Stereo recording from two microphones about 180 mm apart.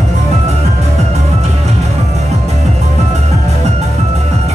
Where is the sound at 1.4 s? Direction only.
35° right (ahead or behind).